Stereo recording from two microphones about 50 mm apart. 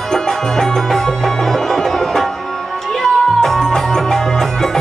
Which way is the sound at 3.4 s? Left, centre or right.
Centre.